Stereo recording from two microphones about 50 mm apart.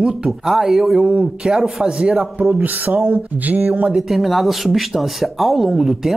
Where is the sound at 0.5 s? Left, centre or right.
Centre.